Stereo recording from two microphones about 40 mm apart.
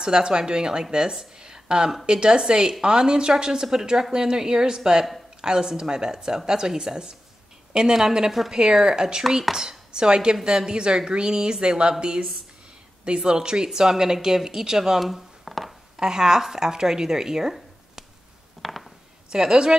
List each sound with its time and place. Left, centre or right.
0.0 s a woman's voice: centre
13.0 s speech: right; by 15.7 s centre
16.0 s speech: centre
18.6 s a sound: centre
19.3 s speech: centre